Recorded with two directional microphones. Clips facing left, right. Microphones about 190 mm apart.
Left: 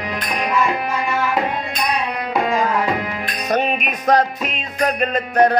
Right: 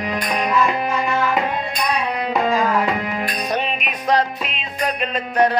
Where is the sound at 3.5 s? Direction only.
45° left (ahead or behind).